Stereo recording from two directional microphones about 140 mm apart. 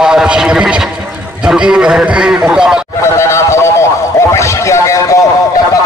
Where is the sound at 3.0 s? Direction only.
20° left (ahead or behind).